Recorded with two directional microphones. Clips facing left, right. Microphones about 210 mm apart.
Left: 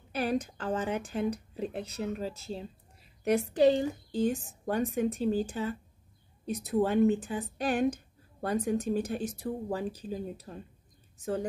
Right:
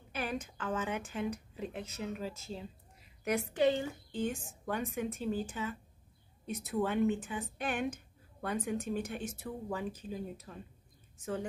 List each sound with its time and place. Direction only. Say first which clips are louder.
0.1 s speech: left 8 dB; 35° left (ahead or behind)